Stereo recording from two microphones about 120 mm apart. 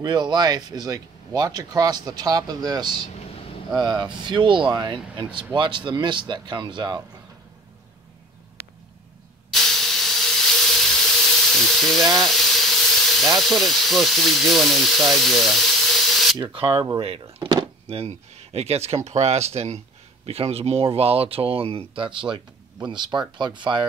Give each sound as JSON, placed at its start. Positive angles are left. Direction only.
{"t": 0.0, "sound": "speech", "side_deg": -35}
{"t": 9.5, "sound": "steam", "side_deg": 5}
{"t": 13.4, "sound": "speech", "side_deg": 0}
{"t": 16.5, "sound": "speech", "side_deg": -45}
{"t": 17.8, "sound": "speech", "side_deg": -60}